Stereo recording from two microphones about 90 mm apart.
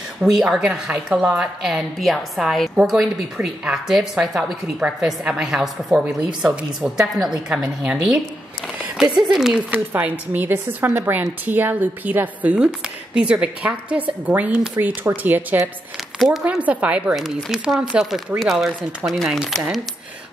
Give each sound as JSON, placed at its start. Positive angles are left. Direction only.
{"t": 0.2, "sound": "a woman's voice", "side_deg": -5}
{"t": 9.3, "sound": "speech", "side_deg": -5}
{"t": 9.6, "sound": "a woman's voice", "side_deg": -15}
{"t": 15.0, "sound": "speech", "side_deg": -20}
{"t": 16.2, "sound": "speech", "side_deg": 0}
{"t": 16.4, "sound": "a woman's voice", "side_deg": -15}
{"t": 17.1, "sound": "speech", "side_deg": -5}